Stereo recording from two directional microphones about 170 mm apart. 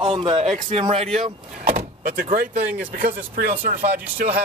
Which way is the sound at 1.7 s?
60° right (ahead or behind).